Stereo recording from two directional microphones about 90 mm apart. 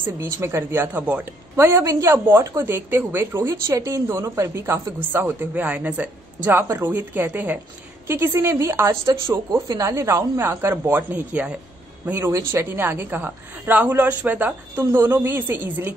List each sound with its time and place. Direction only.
0.0 s speech: 30° right (ahead or behind)
1.7 s a woman's voice: 30° right (ahead or behind)
12.1 s speech: 30° right (ahead or behind)